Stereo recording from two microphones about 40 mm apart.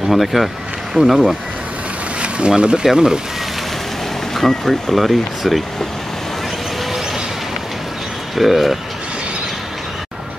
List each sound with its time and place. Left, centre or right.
0.1 s speech: centre
2.1 s speech: right
2.8 s speech: centre
4.4 s speech: centre
8.4 s speech: centre